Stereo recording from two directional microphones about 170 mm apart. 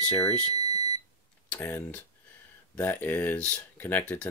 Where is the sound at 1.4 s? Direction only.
10° left (ahead or behind).